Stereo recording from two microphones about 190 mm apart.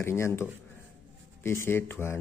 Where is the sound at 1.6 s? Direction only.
10° left (ahead or behind).